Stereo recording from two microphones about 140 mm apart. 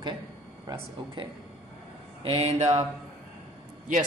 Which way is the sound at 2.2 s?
45° right (ahead or behind).